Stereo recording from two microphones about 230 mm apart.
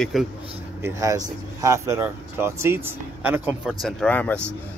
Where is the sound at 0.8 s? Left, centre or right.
Centre.